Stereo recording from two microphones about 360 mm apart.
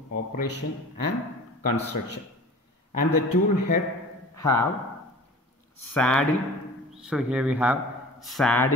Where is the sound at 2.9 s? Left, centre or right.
Left.